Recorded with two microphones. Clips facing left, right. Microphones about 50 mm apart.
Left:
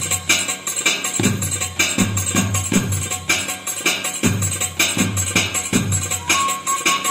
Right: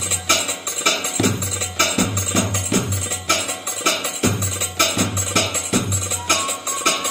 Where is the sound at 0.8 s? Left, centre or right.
Centre.